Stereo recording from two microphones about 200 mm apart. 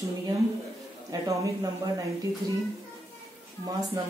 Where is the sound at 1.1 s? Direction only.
15° right (ahead or behind).